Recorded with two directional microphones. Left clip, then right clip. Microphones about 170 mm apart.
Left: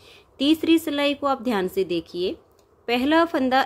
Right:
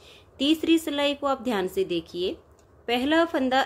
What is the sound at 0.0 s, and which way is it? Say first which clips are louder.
A woman's voice: left 3 dB; 15° left (ahead or behind).